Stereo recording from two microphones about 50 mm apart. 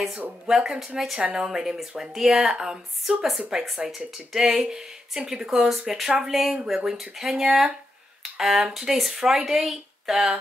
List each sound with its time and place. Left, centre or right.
0.5 s speech: centre
3.6 s speech: centre
8.2 s a sound: centre
8.7 s speech: centre